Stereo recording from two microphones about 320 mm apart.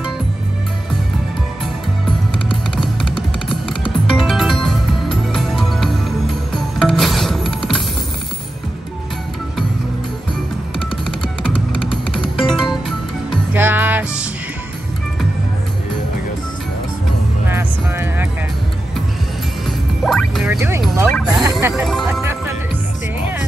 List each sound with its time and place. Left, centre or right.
2.7 s music: centre
4.1 s music: centre
11.5 s music: centre
12.4 s music: centre
17.5 s vehicle: centre
20.1 s music: centre